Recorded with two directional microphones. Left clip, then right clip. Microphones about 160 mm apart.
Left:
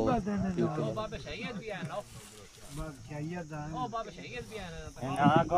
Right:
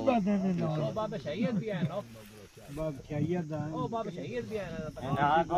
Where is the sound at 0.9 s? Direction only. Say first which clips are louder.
Right 4 dB; 40° right (ahead or behind).